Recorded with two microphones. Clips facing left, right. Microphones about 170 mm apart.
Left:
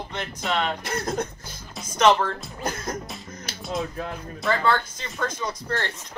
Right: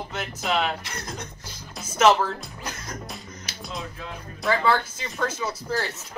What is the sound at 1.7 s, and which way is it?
Speech, 5° right (ahead or behind).